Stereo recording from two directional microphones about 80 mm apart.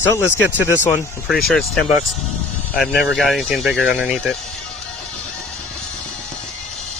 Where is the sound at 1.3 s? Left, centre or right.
Centre.